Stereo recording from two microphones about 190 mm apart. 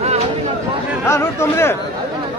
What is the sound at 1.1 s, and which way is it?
Speech, 15° left (ahead or behind).